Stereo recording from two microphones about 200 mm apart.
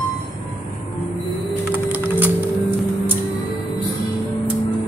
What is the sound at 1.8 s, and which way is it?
Typing, 10° right (ahead or behind).